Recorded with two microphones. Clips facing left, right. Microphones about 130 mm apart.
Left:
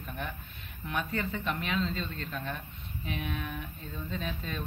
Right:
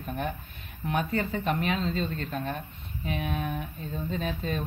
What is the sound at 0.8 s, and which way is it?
Speech, 40° right (ahead or behind).